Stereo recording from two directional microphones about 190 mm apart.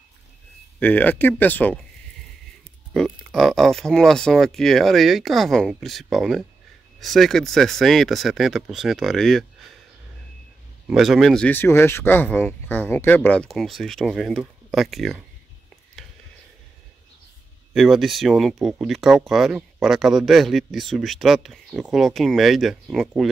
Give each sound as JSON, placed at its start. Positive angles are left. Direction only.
{"t": 0.7, "sound": "speech", "side_deg": 10}
{"t": 2.9, "sound": "speech", "side_deg": 0}
{"t": 10.9, "sound": "speech", "side_deg": 0}
{"t": 16.0, "sound": "a sound", "side_deg": 0}
{"t": 17.7, "sound": "speech", "side_deg": 0}